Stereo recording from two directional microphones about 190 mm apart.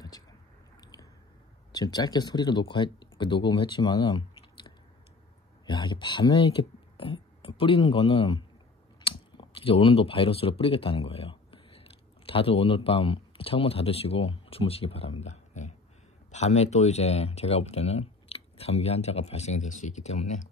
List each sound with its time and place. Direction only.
1.7 s speech: 20° left (ahead or behind); by 20.4 s 35° left (ahead or behind)